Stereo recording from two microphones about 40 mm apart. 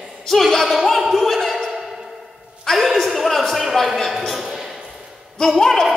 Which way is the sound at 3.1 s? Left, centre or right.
Centre.